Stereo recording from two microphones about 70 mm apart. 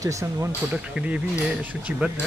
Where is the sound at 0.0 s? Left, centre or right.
Right.